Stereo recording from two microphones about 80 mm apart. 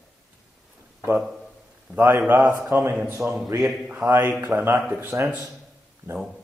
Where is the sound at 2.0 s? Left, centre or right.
Right.